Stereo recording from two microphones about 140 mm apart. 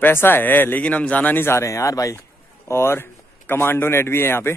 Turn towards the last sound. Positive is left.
turn(degrees=15)  # may be behind; listen again after turning